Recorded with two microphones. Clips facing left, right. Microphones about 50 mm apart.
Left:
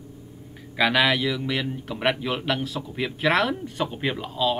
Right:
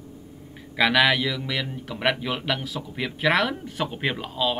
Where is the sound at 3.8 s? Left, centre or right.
Right.